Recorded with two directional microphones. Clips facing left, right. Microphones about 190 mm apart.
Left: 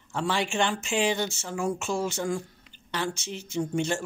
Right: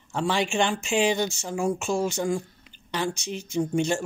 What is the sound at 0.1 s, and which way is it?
Speech, 15° right (ahead or behind).